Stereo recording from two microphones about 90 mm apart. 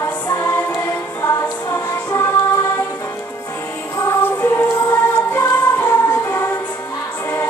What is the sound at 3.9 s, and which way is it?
Music, 35° left (ahead or behind).